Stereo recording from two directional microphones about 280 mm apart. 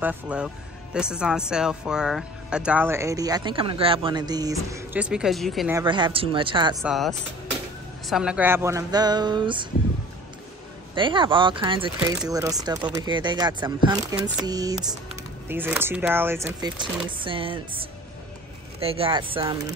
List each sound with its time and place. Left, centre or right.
0.0 s speech: centre
5.8 s speech: centre
6.8 s speech: centre
11.0 s speech: centre
18.8 s speech: centre